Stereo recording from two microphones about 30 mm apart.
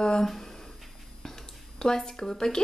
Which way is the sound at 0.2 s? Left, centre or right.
Centre.